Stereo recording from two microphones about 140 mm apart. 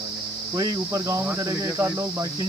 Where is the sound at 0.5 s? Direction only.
20° right (ahead or behind).